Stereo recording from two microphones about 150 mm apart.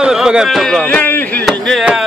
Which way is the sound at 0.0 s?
5° right (ahead or behind).